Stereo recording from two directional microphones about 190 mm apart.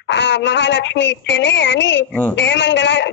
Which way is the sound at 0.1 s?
70° left (ahead or behind).